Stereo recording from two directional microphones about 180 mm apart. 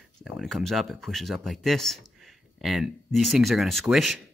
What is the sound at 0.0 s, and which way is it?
Speech, centre (ahead or behind).